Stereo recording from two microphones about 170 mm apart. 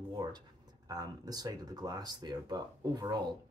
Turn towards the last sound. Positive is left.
turn(degrees=-25)  # may be behind; listen again after turning